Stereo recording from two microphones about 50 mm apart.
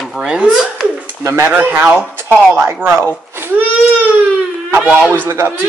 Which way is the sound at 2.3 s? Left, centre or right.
Right.